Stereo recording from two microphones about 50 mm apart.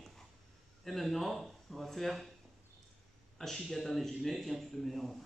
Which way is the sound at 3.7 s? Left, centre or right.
Centre.